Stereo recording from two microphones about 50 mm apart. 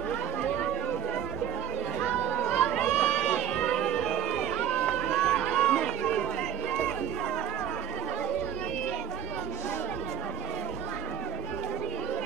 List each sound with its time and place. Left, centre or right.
2.1 s chatter: left
2.4 s run: centre
4.6 s run: left
5.1 s run: centre